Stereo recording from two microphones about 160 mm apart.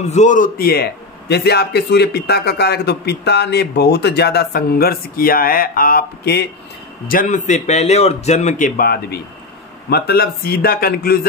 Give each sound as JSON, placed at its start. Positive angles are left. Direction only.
{"t": 0.0, "sound": "a man's voice", "side_deg": 45}
{"t": 1.3, "sound": "a man's voice", "side_deg": 90}
{"t": 7.1, "sound": "a man's voice", "side_deg": 55}